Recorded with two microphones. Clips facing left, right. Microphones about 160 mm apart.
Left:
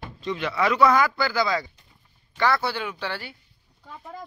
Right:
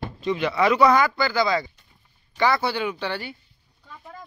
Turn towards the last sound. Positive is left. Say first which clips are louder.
# right 4 dB
turn(degrees=0)  # may be behind; listen again after turning